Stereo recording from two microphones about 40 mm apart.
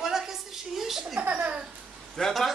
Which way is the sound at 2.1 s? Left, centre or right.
Centre.